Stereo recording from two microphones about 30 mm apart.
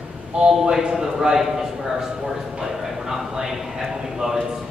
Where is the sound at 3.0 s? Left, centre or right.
Centre.